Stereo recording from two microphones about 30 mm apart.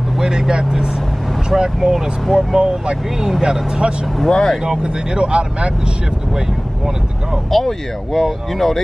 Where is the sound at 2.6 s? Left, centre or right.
Right.